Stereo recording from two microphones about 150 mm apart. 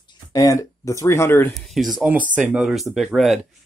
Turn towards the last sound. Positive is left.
turn(degrees=0)  # may be behind; listen again after turning